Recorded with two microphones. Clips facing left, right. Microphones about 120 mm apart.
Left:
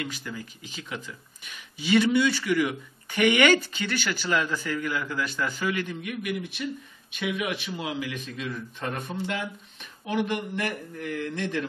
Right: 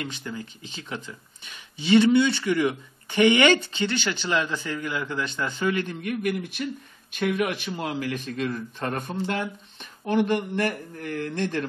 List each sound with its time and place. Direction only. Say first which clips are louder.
0.0 s speech: right 1 dB; 25° right (ahead or behind)
6.0 s speech: right 4 dB; 45° right (ahead or behind)